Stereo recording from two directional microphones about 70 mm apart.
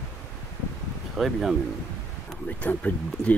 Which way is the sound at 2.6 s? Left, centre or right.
Left.